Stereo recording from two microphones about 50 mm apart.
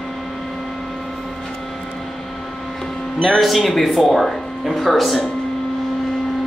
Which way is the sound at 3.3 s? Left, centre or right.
Centre.